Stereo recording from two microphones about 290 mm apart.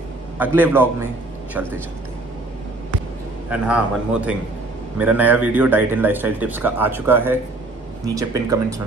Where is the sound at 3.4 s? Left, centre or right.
Centre.